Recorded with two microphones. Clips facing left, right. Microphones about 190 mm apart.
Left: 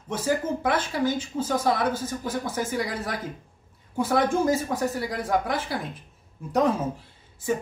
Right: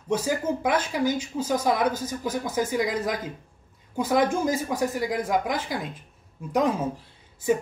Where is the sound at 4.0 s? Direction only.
15° right (ahead or behind).